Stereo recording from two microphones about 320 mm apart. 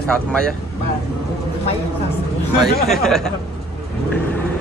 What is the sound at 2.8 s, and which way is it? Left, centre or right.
Speech, centre.